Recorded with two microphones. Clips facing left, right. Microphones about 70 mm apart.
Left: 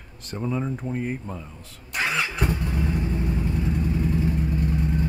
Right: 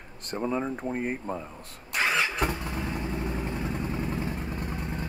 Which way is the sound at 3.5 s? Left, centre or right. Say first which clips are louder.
Left 5 dB; right.